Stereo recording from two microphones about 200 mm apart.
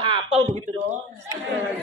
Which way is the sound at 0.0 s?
25° right (ahead or behind).